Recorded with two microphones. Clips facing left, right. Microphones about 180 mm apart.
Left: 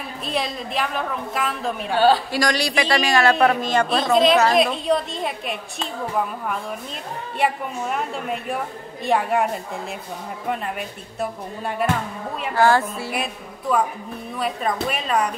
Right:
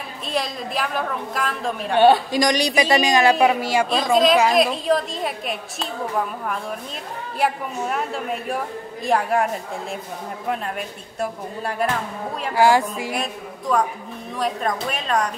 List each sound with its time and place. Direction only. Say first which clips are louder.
0.3 s a woman's voice: right 1 dB; centre (ahead or behind)
2.0 s a man's voice: right 3 dB; 25° right (ahead or behind); by 9.6 s centre (ahead or behind)
11.1 s a woman's voice: right 1 dB; centre (ahead or behind)
12.5 s a woman's voice: right 1 dB; 15° right (ahead or behind)
13.1 s a woman's voice: right 1 dB; 5° left (ahead or behind)